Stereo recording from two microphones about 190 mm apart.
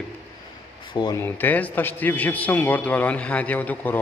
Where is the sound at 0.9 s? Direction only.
25° left (ahead or behind).